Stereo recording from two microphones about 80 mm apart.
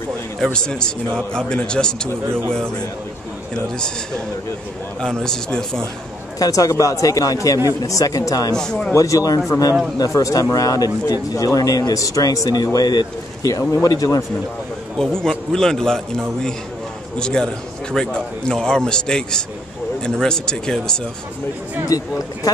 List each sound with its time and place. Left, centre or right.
0.4 s speech: centre
5.0 s speech: centre
6.4 s speech: left
8.5 s a man's voice: centre
8.9 s speech: left
15.0 s speech: centre
21.8 s speech: left